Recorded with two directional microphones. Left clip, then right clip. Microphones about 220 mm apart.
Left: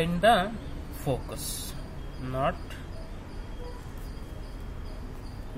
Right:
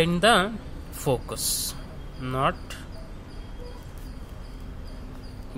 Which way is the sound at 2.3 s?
45° right (ahead or behind).